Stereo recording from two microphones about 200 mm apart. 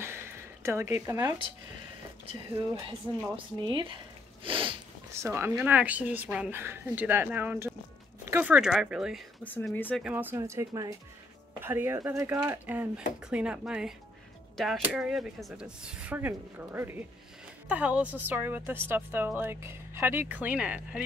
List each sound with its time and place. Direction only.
0.0 s a sound: 10° right (ahead or behind)
2.7 s speech: 15° right (ahead or behind)
5.1 s a woman's voice: 15° right (ahead or behind)
9.4 s speech: 10° left (ahead or behind)
10.0 s a woman's voice: 10° right (ahead or behind)